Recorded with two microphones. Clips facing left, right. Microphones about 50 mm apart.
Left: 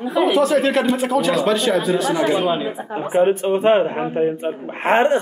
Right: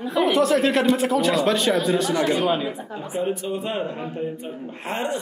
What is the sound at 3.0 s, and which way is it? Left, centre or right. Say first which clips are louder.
A man's voice: left 11 dB; left.